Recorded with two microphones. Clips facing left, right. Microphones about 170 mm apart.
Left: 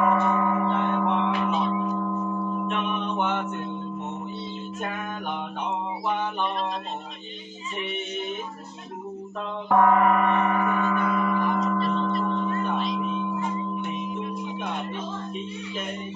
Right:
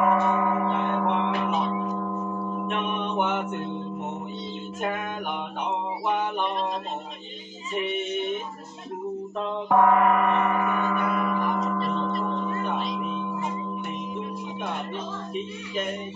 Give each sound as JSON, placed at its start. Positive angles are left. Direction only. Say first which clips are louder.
{"t": 0.0, "sound": "church bell", "louder": "even", "side_deg": -5}
{"t": 1.4, "sound": "music", "louder": "left 1 dB", "side_deg": -15}
{"t": 9.7, "sound": "a sound", "louder": "even", "side_deg": 0}
{"t": 12.2, "sound": "gong", "louder": "left 2 dB", "side_deg": -10}
{"t": 12.9, "sound": "music", "louder": "left 2 dB", "side_deg": 0}